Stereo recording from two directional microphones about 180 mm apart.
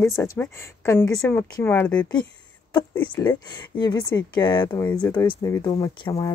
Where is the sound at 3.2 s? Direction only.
20° left (ahead or behind).